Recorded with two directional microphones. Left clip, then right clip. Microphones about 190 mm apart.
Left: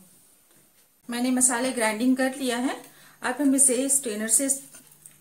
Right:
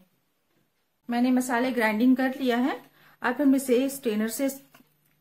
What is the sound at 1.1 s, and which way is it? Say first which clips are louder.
A woman's voice: right 1 dB; 30° right (ahead or behind).